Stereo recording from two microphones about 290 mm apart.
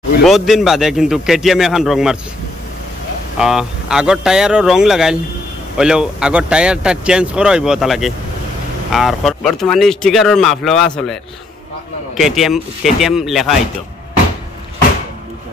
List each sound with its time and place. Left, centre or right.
0.2 s speech: centre
3.3 s speech: centre
12.2 s speech: centre